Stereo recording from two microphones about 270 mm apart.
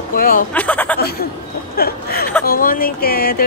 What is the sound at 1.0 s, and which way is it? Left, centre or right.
Music, left.